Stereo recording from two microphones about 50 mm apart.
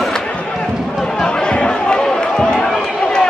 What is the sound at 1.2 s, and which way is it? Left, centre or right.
Chatter, centre.